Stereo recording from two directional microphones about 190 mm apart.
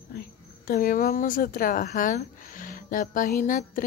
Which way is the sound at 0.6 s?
50° left (ahead or behind).